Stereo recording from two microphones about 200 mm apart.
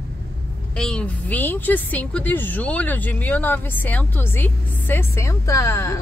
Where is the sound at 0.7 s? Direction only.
5° left (ahead or behind).